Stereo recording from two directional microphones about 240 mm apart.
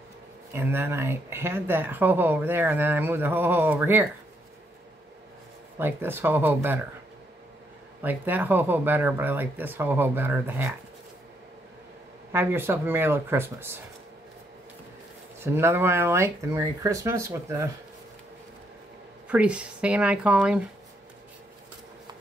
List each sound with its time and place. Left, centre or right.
0.5 s speech: centre
5.8 s speech: centre
8.0 s speech: centre
12.3 s speech: centre
15.4 s speech: centre
19.2 s speech: centre